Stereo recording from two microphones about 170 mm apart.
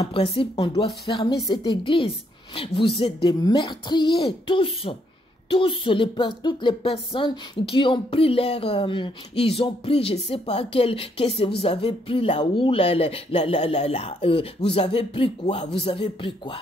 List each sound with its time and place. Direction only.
0.4 s speech: 30° left (ahead or behind)